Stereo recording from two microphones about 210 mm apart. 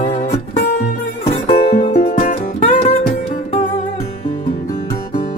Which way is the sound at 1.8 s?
35° left (ahead or behind).